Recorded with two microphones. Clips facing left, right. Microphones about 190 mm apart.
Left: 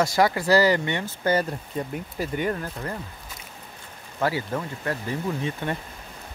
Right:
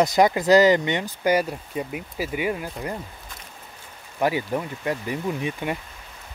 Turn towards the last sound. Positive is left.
turn(degrees=-15)  # may be behind; listen again after turning